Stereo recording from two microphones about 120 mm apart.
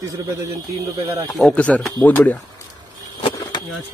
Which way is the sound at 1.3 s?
5° left (ahead or behind).